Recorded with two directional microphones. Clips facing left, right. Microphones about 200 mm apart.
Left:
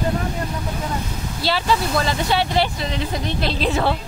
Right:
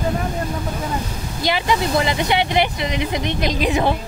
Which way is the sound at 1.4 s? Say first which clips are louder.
Right 1 dB; 15° right (ahead or behind).